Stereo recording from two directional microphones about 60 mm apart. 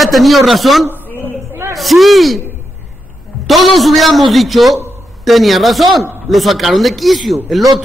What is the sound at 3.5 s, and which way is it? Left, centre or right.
Speech, centre.